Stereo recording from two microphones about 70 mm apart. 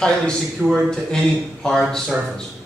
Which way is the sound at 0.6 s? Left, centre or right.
Right.